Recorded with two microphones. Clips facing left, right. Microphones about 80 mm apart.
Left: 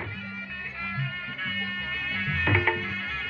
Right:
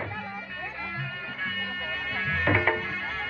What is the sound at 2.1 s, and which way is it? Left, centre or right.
Music, right.